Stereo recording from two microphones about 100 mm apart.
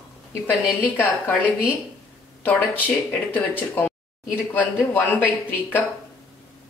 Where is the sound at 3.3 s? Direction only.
15° left (ahead or behind).